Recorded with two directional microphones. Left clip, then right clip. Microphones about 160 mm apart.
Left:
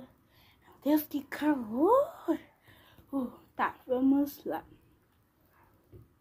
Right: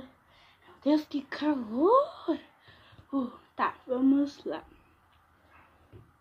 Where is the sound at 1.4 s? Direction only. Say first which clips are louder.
Right 1 dB; 35° left (ahead or behind); by 4.4 s 50° left (ahead or behind).